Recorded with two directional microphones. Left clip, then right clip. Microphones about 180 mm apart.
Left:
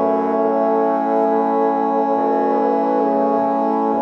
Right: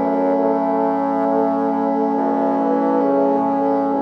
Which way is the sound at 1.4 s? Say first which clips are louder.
Left 2 dB; 25° left (ahead or behind).